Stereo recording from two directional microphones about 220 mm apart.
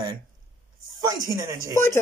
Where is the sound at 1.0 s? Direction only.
15° right (ahead or behind).